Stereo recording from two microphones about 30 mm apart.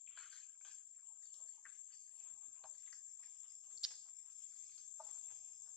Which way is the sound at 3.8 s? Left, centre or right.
Centre.